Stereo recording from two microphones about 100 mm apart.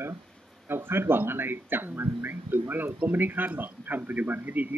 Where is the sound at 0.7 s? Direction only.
25° right (ahead or behind).